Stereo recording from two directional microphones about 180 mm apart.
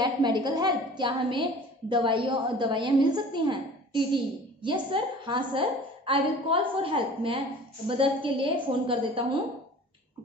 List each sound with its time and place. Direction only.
0.0 s a woman's voice: 25° right (ahead or behind)